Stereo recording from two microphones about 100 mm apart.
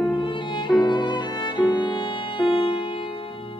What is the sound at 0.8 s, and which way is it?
Music, 50° left (ahead or behind).